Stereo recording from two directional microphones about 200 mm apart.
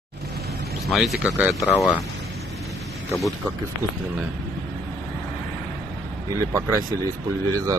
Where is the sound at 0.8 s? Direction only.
Centre (ahead or behind).